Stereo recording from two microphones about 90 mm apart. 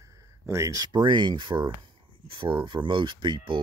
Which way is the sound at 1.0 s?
60° right (ahead or behind).